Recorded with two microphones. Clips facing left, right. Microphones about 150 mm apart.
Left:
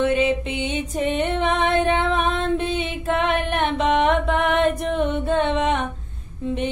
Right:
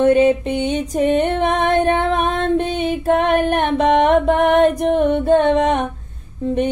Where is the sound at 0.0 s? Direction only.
40° right (ahead or behind).